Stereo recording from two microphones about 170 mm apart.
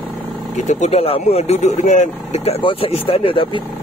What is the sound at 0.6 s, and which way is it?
Speech, 45° left (ahead or behind).